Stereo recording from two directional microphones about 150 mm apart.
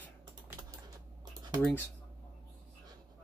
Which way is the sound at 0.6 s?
30° right (ahead or behind).